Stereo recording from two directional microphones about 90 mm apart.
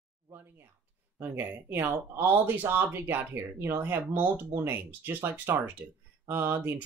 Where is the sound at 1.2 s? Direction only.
25° right (ahead or behind).